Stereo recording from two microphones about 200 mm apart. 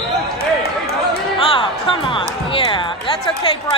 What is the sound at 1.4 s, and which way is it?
Music, 25° left (ahead or behind).